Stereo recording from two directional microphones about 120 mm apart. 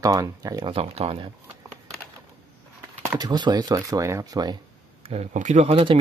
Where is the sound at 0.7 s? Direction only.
55° right (ahead or behind).